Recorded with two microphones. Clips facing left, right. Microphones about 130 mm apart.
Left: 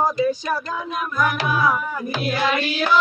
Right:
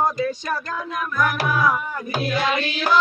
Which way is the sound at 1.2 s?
15° left (ahead or behind).